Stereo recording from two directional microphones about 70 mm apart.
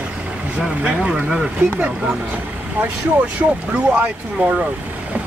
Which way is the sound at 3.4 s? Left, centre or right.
Centre.